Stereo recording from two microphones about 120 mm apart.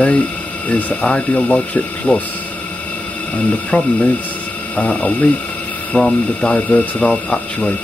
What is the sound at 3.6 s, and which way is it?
Speech, 15° left (ahead or behind).